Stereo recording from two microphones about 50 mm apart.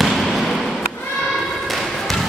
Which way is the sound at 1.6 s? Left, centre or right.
Centre.